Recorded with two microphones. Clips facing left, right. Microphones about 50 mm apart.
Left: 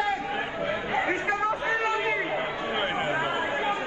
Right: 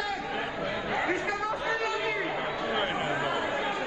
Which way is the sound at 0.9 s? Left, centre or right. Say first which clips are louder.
Left 3 dB; left.